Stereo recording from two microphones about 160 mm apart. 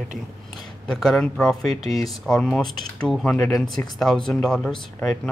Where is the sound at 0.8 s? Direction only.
5° left (ahead or behind).